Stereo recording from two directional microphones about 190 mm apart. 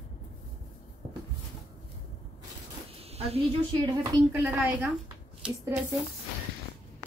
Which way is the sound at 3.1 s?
35° right (ahead or behind).